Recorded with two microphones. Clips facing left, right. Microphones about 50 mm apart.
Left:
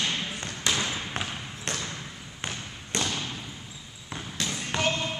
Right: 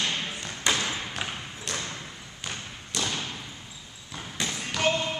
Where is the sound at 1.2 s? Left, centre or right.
Left.